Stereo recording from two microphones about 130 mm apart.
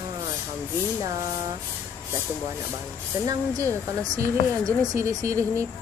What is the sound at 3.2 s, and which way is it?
Speech, 25° right (ahead or behind).